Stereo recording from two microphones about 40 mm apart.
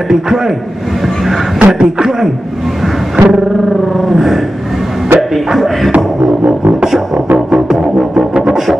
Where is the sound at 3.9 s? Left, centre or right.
Centre.